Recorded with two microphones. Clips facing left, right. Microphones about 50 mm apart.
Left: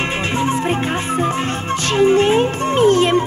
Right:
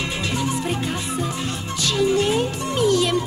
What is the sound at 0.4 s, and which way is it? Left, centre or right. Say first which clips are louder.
Music: left 7 dB; left.